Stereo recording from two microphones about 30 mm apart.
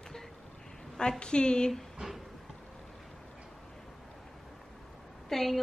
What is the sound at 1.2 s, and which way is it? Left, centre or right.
Speech, left.